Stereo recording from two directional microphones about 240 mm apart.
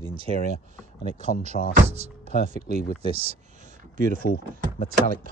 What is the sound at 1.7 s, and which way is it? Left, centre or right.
Speech, right.